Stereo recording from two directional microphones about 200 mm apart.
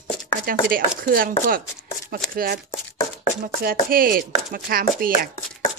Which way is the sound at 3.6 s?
45° right (ahead or behind).